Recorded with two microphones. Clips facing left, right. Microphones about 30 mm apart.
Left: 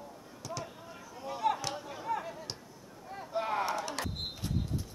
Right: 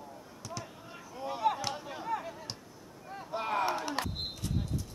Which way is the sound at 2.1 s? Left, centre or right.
Centre.